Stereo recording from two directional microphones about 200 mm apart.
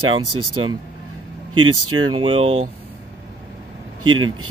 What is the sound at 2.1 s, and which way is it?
Speech, 25° right (ahead or behind).